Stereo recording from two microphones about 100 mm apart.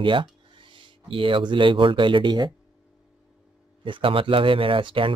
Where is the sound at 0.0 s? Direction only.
55° right (ahead or behind).